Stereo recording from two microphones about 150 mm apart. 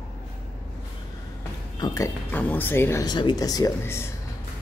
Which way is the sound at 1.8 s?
20° left (ahead or behind).